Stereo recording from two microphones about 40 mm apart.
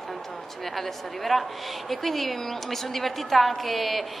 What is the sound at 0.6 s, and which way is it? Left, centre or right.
A woman's voice, centre.